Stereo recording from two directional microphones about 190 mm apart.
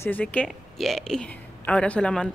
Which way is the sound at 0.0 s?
10° left (ahead or behind).